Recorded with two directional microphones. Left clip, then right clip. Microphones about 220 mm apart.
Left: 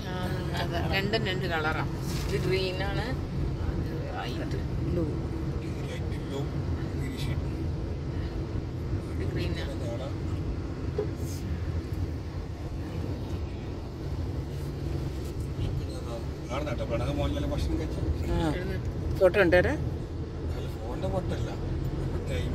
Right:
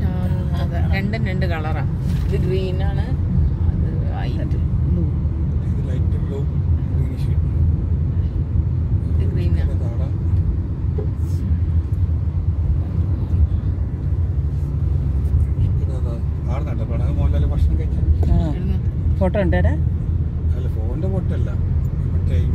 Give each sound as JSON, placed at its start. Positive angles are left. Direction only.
{"t": 1.2, "sound": "speech", "side_deg": 0}
{"t": 19.2, "sound": "speech", "side_deg": 40}